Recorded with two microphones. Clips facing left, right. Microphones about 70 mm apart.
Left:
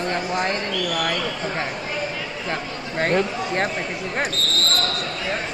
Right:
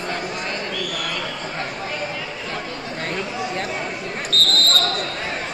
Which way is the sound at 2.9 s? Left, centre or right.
Left.